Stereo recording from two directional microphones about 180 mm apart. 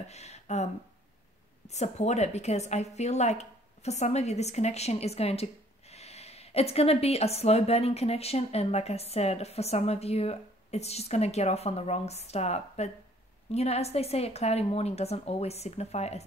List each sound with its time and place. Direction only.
0.1 s speech: 40° left (ahead or behind)
1.7 s a woman's voice: 40° left (ahead or behind)